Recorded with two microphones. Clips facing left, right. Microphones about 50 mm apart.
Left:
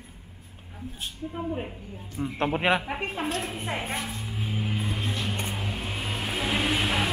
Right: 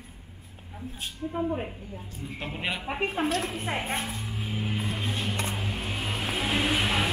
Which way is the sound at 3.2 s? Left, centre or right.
Centre.